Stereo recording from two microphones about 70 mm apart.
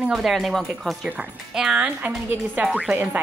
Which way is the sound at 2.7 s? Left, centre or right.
Centre.